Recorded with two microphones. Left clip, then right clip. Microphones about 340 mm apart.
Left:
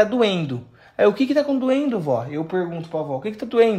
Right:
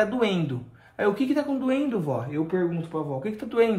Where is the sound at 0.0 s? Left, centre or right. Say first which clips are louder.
Left 6 dB; left.